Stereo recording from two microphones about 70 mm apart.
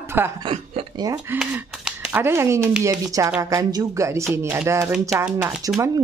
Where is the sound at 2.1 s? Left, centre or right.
Right.